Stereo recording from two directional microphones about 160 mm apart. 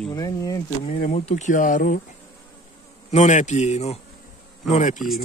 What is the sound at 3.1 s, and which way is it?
Speech, 45° left (ahead or behind).